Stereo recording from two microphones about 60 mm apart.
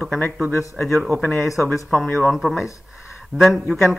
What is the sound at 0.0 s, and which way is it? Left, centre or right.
A man's voice, centre.